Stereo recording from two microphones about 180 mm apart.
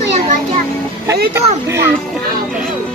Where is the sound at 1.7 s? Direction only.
15° right (ahead or behind).